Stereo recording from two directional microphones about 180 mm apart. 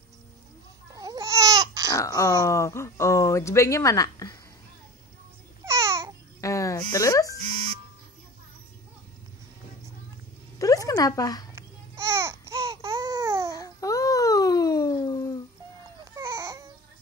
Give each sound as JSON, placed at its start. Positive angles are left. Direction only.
{"t": 0.9, "sound": "babbling", "side_deg": -20}
{"t": 1.9, "sound": "speech", "side_deg": 20}
{"t": 5.7, "sound": "babbling", "side_deg": -15}
{"t": 6.4, "sound": "music", "side_deg": 15}
{"t": 10.9, "sound": "speech", "side_deg": 20}
{"t": 11.5, "sound": "babbling", "side_deg": -15}
{"t": 13.6, "sound": "a sound", "side_deg": 20}
{"t": 16.2, "sound": "baby cry", "side_deg": -15}